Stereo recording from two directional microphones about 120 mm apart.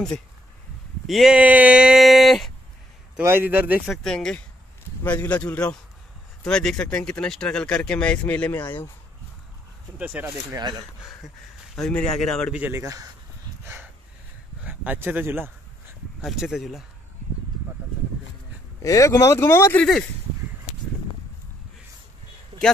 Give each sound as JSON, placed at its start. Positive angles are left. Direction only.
{"t": 1.0, "sound": "speech", "side_deg": 0}
{"t": 3.2, "sound": "a man's voice", "side_deg": -15}
{"t": 3.8, "sound": "speech", "side_deg": 5}
{"t": 9.9, "sound": "a man's voice", "side_deg": -15}
{"t": 10.5, "sound": "speech", "side_deg": -35}
{"t": 11.7, "sound": "speech", "side_deg": 5}
{"t": 12.5, "sound": "a man's voice", "side_deg": -15}
{"t": 12.8, "sound": "a man's voice", "side_deg": -30}
{"t": 14.6, "sound": "a sound", "side_deg": -15}
{"t": 15.1, "sound": "a man's voice", "side_deg": -20}
{"t": 16.2, "sound": "speech", "side_deg": -5}
{"t": 18.8, "sound": "speech", "side_deg": 25}
{"t": 19.8, "sound": "speech", "side_deg": 5}